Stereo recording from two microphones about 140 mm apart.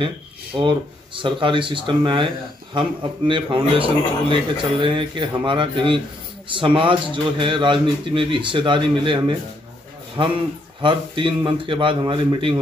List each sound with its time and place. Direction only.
0.7 s a man's voice: 35° right (ahead or behind)